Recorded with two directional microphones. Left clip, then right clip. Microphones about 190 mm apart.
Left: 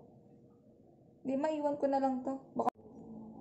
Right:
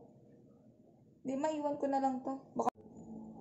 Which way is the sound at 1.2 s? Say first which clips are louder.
Left 2 dB; 10° left (ahead or behind).